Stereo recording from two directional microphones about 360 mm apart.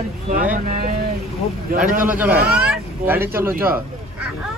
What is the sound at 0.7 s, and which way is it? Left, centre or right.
Speech, right.